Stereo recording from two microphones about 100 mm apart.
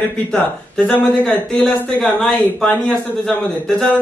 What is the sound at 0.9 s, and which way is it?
Speech, 20° left (ahead or behind).